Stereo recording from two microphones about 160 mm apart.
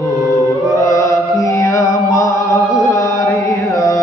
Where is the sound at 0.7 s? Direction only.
20° left (ahead or behind).